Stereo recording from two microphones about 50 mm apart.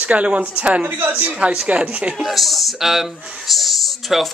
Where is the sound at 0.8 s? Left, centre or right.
Right.